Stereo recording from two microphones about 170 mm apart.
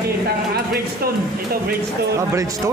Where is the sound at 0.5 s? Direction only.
65° right (ahead or behind).